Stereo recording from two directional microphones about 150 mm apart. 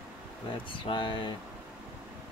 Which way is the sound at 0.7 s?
35° left (ahead or behind).